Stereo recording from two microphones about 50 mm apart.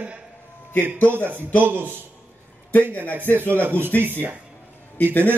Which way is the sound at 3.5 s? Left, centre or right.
Right.